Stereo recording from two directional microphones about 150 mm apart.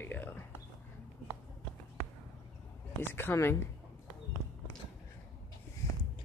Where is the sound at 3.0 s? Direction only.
15° left (ahead or behind).